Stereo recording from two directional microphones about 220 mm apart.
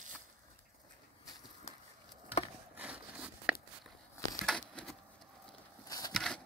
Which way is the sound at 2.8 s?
5° right (ahead or behind).